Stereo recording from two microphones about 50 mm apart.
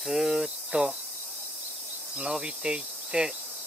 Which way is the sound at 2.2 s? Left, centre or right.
Centre.